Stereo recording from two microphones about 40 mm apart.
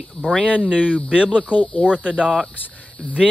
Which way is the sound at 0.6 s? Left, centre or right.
Right.